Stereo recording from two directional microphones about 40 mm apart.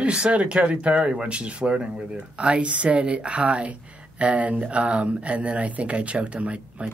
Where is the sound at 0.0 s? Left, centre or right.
Right.